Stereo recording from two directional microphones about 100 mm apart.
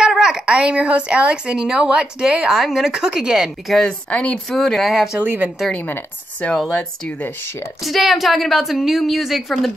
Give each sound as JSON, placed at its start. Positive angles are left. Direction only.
{"t": 0.0, "sound": "speech", "side_deg": -5}
{"t": 4.1, "sound": "a woman's voice", "side_deg": 10}
{"t": 5.2, "sound": "speech", "side_deg": -20}
{"t": 5.7, "sound": "a woman's voice", "side_deg": 20}
{"t": 7.8, "sound": "a woman's voice", "side_deg": 0}